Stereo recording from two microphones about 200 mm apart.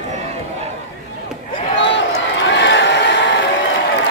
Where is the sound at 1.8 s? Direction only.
65° left (ahead or behind).